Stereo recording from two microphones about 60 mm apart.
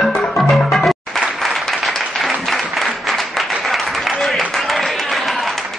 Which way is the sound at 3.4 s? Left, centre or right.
Centre.